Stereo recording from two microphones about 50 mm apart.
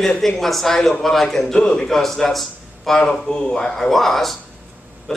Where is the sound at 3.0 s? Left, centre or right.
Centre.